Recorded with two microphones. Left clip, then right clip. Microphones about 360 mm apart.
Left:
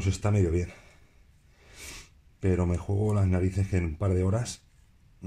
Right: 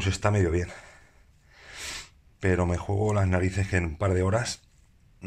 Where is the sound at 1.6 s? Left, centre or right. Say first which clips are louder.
Right 8 dB; right.